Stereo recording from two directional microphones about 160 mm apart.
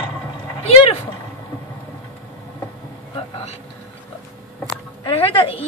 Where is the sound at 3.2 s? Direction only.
40° left (ahead or behind).